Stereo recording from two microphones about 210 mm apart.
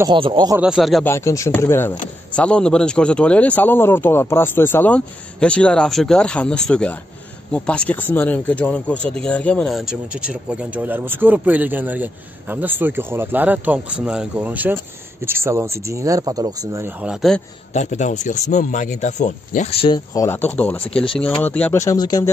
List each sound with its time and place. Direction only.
0.0 s speech: 25° right (ahead or behind)
0.6 s speech: centre (ahead or behind)
1.0 s speech: 15° left (ahead or behind)
17.7 s speech: 35° left (ahead or behind)
20.2 s speech: 10° left (ahead or behind)
20.8 s speech: 25° left (ahead or behind)
21.4 s speech: 10° left (ahead or behind)